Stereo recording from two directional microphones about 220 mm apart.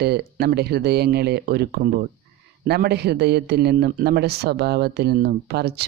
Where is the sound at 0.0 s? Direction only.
45° right (ahead or behind).